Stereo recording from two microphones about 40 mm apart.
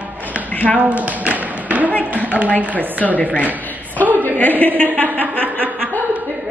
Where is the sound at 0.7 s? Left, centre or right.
Right.